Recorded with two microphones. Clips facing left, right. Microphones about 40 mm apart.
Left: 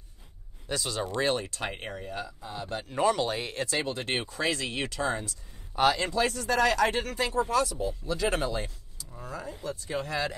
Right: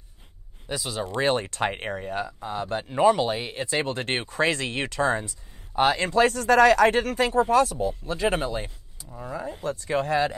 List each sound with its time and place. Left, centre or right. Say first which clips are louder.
0.7 s speech: right 2 dB; centre
1.0 s speech: right 5 dB; right
2.8 s speech: right 6 dB; centre
3.7 s speech: right 5 dB; right
8.1 s speech: right 2 dB; right
9.1 s speech: right 6 dB; centre
9.5 s speech: right 7 dB; right